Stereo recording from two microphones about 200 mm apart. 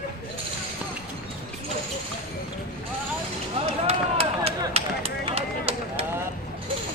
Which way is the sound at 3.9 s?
30° right (ahead or behind).